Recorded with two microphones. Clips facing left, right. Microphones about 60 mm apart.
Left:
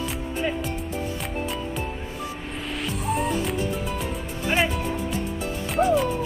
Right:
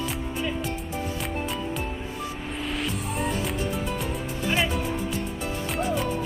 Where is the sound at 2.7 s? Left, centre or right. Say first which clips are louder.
Left 5 dB; centre.